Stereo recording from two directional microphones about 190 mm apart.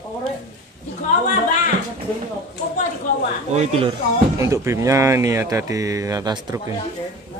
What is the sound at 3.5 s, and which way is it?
Speech, 35° right (ahead or behind).